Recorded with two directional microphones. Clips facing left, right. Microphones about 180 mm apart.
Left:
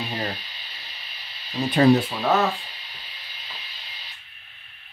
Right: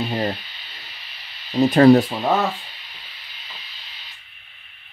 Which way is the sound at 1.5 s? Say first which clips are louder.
Right 9 dB; 35° right (ahead or behind).